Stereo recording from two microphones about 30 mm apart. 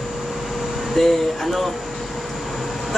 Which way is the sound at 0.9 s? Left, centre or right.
Centre.